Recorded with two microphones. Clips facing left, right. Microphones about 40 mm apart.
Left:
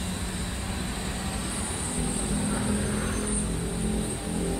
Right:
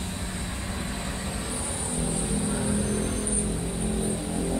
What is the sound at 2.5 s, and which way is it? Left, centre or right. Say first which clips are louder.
Vehicle: even; centre.